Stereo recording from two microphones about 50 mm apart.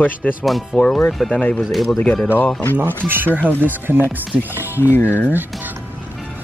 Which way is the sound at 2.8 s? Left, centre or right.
Right.